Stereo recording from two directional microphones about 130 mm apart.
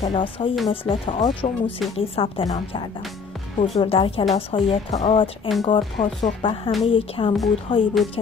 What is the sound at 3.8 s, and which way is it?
A woman's voice, 45° left (ahead or behind).